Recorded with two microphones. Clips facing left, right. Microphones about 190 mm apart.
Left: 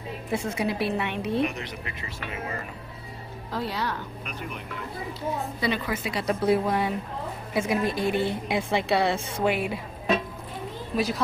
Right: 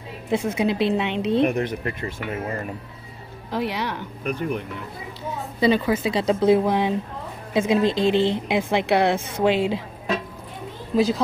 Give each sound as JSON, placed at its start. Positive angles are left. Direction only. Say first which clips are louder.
{"t": 0.3, "sound": "a woman's voice", "louder": "right 6 dB", "side_deg": -20}
{"t": 1.4, "sound": "speech", "louder": "right 7 dB", "side_deg": -55}
{"t": 3.5, "sound": "speech", "louder": "right 4 dB", "side_deg": -20}
{"t": 5.6, "sound": "a woman's voice", "louder": "right 12 dB", "side_deg": -25}
{"t": 9.5, "sound": "a woman's voice", "louder": "right 7 dB", "side_deg": -90}
{"t": 10.9, "sound": "a woman's voice", "louder": "right 7 dB", "side_deg": -25}